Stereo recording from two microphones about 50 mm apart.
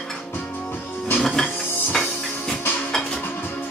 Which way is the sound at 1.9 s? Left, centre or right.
Centre.